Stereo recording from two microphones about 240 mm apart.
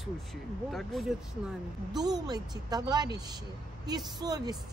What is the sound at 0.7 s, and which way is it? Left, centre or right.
Speech, centre.